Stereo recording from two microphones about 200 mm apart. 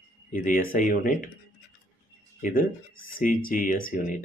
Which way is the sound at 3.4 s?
45° left (ahead or behind).